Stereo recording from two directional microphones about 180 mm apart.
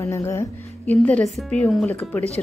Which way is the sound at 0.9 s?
5° left (ahead or behind).